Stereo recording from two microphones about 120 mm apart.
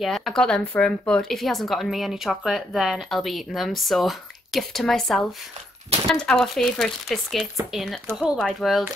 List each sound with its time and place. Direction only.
0.0 s speech: centre (ahead or behind)